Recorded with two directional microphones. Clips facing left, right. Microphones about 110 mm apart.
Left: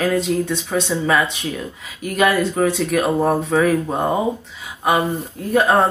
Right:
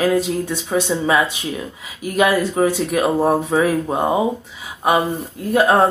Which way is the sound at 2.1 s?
10° right (ahead or behind).